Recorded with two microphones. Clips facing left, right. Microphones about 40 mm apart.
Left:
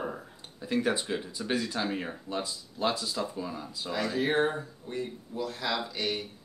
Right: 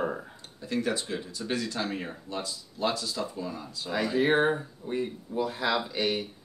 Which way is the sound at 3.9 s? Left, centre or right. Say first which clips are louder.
Right 4 dB; centre.